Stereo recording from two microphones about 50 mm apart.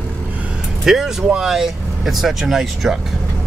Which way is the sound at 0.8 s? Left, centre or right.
Centre.